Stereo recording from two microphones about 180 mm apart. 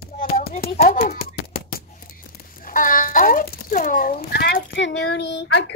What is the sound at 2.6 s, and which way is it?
A child's voice, 50° left (ahead or behind).